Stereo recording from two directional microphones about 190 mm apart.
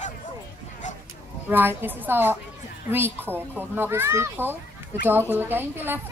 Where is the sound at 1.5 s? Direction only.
10° right (ahead or behind).